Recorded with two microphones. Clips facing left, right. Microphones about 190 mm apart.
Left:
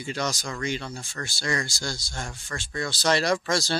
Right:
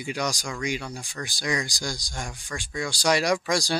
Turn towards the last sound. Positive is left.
turn(degrees=-15)  # may be behind; listen again after turning